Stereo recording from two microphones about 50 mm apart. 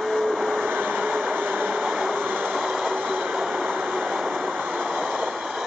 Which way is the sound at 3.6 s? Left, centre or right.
Right.